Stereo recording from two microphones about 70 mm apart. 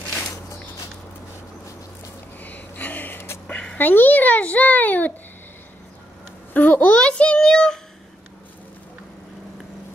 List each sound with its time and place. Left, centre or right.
2.4 s gasp: left
3.7 s a child's voice: left
6.5 s a sound: left